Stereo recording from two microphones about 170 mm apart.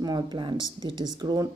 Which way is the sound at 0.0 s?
25° right (ahead or behind).